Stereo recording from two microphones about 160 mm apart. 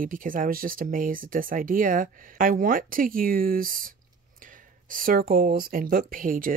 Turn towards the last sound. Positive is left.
turn(degrees=-60)  # may be behind; listen again after turning